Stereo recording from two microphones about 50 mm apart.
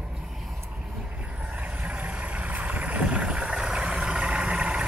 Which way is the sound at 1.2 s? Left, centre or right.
Right.